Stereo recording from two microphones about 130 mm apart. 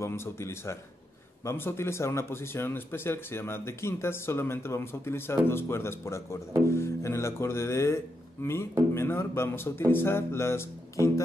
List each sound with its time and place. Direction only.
0.0 s speech: 20° left (ahead or behind)